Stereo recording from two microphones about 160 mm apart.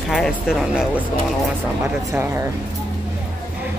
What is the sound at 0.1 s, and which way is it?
Speech, centre (ahead or behind).